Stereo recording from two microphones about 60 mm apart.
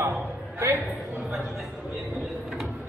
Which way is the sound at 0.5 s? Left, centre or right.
Right.